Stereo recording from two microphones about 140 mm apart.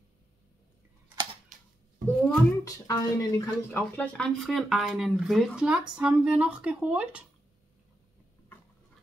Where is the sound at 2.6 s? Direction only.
25° left (ahead or behind).